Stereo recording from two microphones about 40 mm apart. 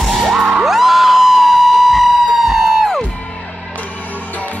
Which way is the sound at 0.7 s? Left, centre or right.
Centre.